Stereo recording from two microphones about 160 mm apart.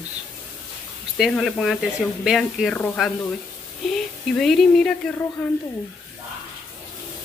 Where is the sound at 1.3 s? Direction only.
Centre (ahead or behind).